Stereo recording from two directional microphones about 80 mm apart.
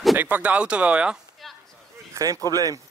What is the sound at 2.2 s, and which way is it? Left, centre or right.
Speech, right.